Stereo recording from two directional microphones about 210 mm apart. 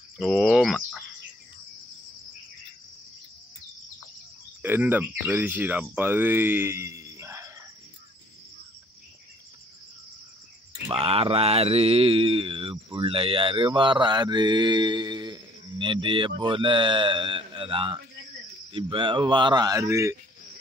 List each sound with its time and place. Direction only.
0.2 s speech: centre (ahead or behind)
0.7 s bird: 10° left (ahead or behind)
4.6 s speech: 10° right (ahead or behind)
10.9 s mantra: 25° right (ahead or behind)
18.7 s speech: 25° right (ahead or behind)